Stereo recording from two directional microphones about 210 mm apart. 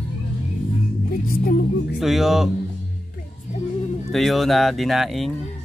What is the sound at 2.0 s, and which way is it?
Speech, centre (ahead or behind).